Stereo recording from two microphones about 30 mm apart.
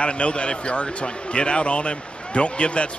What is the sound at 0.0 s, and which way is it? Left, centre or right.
Speech, left.